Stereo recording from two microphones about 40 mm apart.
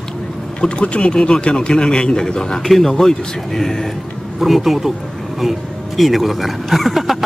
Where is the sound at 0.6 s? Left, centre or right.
Left.